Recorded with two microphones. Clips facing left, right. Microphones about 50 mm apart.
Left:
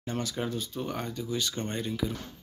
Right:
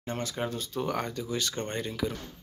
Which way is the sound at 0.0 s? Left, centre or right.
Right.